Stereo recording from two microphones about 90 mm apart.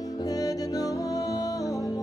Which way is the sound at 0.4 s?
40° left (ahead or behind).